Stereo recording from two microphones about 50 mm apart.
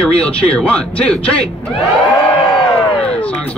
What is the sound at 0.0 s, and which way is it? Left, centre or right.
Speech, left.